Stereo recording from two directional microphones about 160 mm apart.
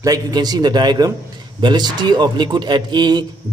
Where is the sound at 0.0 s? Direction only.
25° right (ahead or behind).